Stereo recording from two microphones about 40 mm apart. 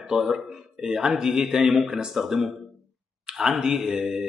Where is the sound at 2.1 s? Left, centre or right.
Centre.